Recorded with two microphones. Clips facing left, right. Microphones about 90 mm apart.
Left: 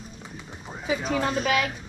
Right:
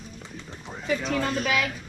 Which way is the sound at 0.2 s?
10° left (ahead or behind).